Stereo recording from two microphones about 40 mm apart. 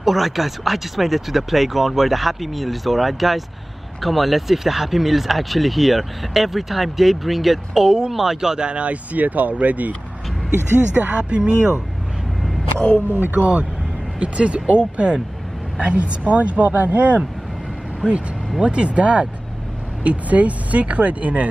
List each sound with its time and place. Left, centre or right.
0.0 s speech: centre
8.6 s speech: right
11.0 s speech: right
12.7 s speech: left
13.1 s speech: right
14.2 s speech: right
18.6 s speech: right